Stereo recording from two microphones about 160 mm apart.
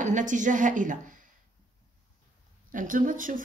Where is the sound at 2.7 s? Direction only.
55° right (ahead or behind).